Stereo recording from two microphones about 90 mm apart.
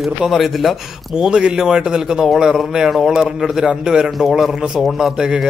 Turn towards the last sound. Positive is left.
turn(degrees=-5)  # may be behind; listen again after turning